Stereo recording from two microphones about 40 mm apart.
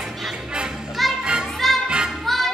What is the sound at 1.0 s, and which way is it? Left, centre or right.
Music, centre.